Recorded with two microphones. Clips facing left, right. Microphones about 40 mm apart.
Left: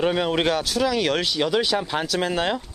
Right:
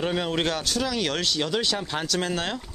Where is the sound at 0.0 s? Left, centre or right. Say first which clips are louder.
Left 4 dB; centre.